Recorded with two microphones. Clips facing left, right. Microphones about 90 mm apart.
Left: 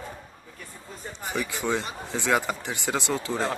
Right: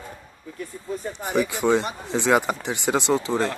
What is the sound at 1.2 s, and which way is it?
Speech, 20° right (ahead or behind).